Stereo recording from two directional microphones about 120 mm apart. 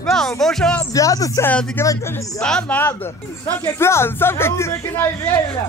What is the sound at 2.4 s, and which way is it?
Speech, 5° left (ahead or behind).